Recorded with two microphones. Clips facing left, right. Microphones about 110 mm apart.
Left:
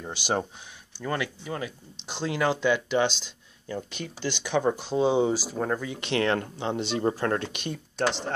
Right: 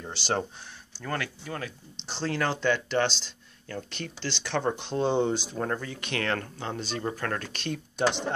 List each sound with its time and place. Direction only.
0.0 s speech: 10° left (ahead or behind)
3.1 s speech: 50° left (ahead or behind)
3.6 s speech: 10° left (ahead or behind)
5.9 s speech: 25° left (ahead or behind)